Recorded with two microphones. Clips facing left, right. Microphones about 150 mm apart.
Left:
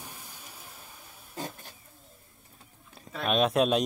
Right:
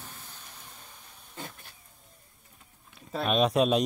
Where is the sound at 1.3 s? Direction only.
40° left (ahead or behind).